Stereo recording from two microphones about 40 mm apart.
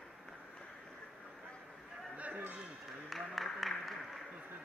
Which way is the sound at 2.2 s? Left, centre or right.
Right.